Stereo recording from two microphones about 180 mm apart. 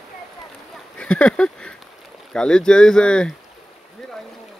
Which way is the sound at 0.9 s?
5° left (ahead or behind).